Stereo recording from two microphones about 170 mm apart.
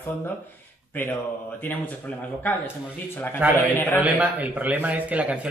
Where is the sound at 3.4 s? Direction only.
10° right (ahead or behind).